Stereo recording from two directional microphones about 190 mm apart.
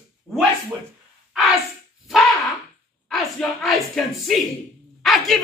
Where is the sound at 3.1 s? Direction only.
Centre (ahead or behind).